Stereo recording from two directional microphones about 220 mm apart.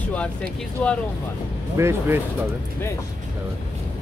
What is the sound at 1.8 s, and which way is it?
Speech, 10° right (ahead or behind).